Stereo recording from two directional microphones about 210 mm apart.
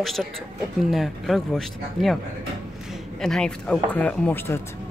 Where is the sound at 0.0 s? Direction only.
Centre (ahead or behind).